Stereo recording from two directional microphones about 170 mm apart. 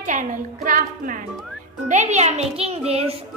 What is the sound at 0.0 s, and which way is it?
Music, 50° right (ahead or behind).